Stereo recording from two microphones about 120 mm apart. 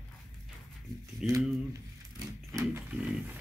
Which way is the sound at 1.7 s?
25° right (ahead or behind).